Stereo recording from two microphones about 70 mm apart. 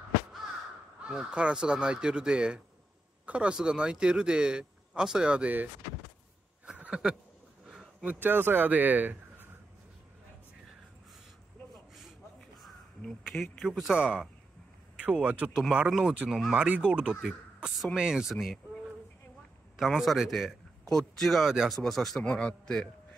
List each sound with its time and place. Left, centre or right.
1.0 s speech: centre
6.6 s a sound: centre
8.0 s speech: right
11.9 s crow: centre
13.7 s speech: centre
15.0 s speech: right
15.9 s speech: centre
16.5 s speech: centre
17.6 s a sound: centre
17.9 s speech: centre
18.3 s speech: centre
19.8 s a man's voice: centre